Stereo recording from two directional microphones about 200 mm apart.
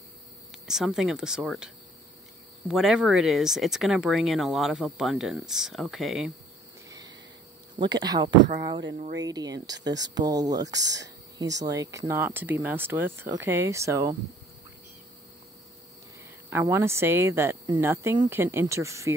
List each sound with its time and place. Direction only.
0.7 s speech: centre (ahead or behind)
2.7 s speech: centre (ahead or behind)
6.9 s a sound: 20° right (ahead or behind)
7.8 s speech: 20° right (ahead or behind)
16.4 s speech: 10° right (ahead or behind)